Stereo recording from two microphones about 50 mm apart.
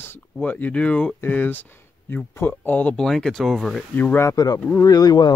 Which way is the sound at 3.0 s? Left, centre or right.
Centre.